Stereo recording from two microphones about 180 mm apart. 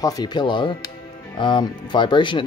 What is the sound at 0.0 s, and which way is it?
Speech, 20° left (ahead or behind).